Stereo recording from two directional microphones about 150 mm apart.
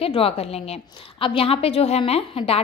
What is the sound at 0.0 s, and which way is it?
A woman's voice, 40° left (ahead or behind).